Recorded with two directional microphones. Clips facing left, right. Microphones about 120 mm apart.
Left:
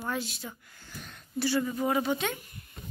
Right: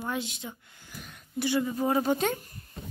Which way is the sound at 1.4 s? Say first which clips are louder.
Right 1 dB; 20° right (ahead or behind).